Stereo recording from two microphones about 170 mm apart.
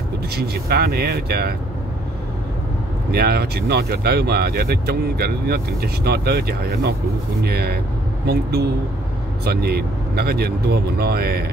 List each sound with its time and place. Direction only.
0.4 s speech: 65° right (ahead or behind)
3.1 s speech: 65° right (ahead or behind)